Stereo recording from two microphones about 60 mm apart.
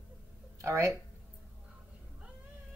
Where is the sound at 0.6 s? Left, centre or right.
Right.